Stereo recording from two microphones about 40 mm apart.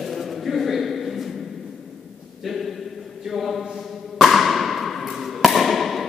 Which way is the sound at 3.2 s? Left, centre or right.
Centre.